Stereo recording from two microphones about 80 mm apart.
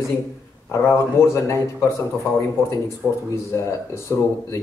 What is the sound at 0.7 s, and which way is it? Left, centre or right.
A man's voice, left.